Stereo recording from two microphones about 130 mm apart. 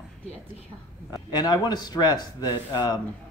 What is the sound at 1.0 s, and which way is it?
Speech, 30° left (ahead or behind).